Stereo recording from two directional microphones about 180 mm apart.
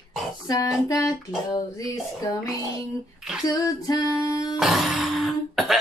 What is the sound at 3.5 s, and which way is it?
Speech, 20° left (ahead or behind).